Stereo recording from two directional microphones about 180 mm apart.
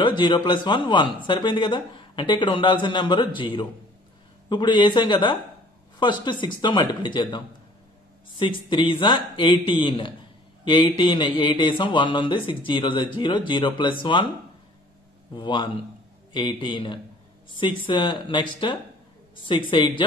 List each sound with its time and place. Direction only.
0.0 s speech: 25° left (ahead or behind)
15.3 s a woman's voice: 25° left (ahead or behind)